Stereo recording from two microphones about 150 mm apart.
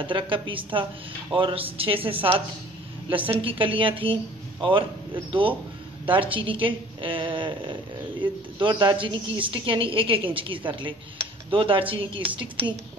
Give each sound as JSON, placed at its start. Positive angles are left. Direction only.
{"t": 0.0, "sound": "a woman's voice", "side_deg": -35}